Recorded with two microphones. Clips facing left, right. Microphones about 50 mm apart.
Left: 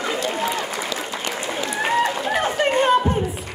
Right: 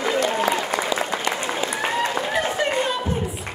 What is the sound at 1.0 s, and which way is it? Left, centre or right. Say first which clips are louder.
Applause: right 4 dB; right.